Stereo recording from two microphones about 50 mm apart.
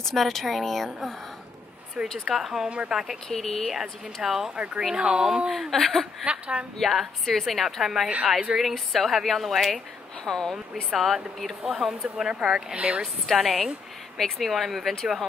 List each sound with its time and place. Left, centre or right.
0.0 s a woman's voice: centre
2.2 s a woman's voice: centre
3.3 s a woman's voice: centre
3.7 s a woman's voice: centre
6.2 s a woman's voice: right
6.8 s a woman's voice: centre
10.5 s a woman's voice: centre
12.7 s a woman's voice: right
13.0 s a woman's voice: centre